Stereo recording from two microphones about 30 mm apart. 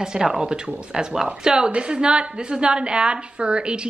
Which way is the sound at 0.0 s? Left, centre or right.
Centre.